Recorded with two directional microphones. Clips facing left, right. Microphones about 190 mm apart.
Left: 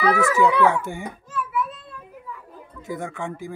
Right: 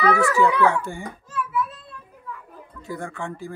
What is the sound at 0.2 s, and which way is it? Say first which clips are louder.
Speech: left 1 dB; 20° left (ahead or behind).